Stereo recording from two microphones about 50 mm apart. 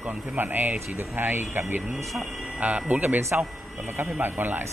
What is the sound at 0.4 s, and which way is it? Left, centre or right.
Speech, right.